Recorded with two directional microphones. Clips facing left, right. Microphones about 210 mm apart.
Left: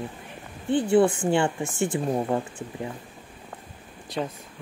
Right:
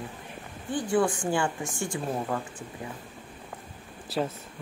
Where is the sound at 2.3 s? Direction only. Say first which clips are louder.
Left 6 dB; 25° left (ahead or behind).